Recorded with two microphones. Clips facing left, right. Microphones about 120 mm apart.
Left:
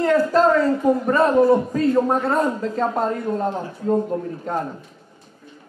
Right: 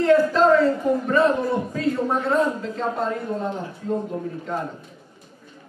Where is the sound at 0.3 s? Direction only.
45° left (ahead or behind).